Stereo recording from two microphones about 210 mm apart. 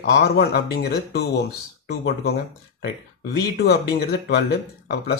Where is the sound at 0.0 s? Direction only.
50° left (ahead or behind).